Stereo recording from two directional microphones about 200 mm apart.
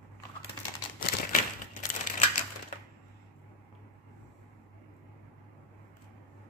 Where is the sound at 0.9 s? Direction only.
40° left (ahead or behind).